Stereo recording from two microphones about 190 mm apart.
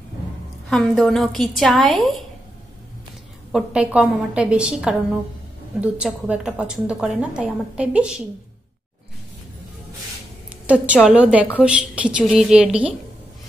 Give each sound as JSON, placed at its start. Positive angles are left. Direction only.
{"t": 0.7, "sound": "a woman's voice", "side_deg": 0}
{"t": 3.5, "sound": "a woman's voice", "side_deg": -5}
{"t": 11.1, "sound": "a woman's voice", "side_deg": -5}